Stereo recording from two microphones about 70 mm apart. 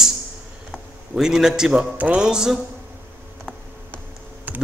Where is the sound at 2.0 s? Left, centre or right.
Right.